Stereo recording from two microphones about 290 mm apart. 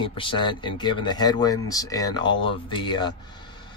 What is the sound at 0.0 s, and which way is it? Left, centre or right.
Speech, centre.